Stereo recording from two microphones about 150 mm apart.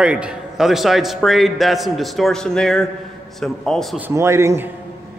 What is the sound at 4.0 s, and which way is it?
Speech, 15° right (ahead or behind).